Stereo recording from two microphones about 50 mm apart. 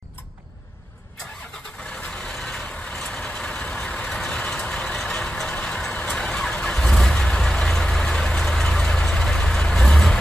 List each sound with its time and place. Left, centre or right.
2.0 s vehicle: centre